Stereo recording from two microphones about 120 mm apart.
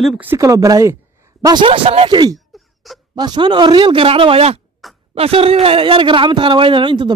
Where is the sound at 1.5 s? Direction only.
45° right (ahead or behind).